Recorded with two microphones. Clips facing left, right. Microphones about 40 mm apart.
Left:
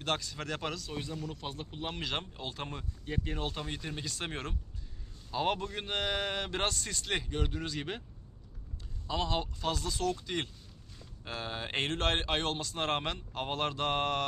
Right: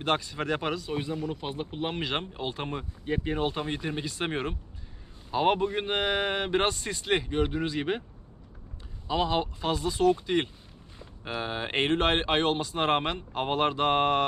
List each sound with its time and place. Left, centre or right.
0.0 s speech: right
9.0 s speech: centre